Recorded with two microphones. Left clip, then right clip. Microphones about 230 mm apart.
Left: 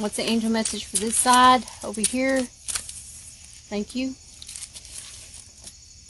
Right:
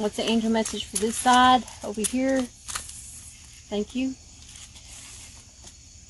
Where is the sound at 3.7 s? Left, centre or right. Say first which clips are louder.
Right 1 dB; left.